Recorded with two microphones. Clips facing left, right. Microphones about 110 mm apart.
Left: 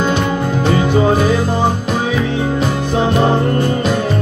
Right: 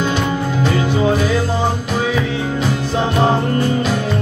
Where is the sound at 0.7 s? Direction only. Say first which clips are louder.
Left 3 dB; 50° left (ahead or behind).